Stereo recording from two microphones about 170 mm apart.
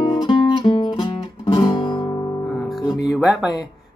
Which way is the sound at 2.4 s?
Centre (ahead or behind).